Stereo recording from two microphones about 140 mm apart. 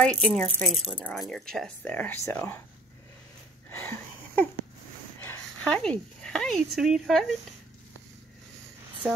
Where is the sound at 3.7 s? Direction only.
15° left (ahead or behind).